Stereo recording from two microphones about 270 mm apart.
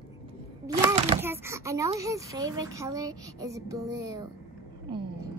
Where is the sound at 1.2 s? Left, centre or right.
Centre.